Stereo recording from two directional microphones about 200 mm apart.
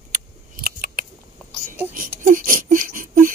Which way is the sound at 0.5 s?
45° right (ahead or behind).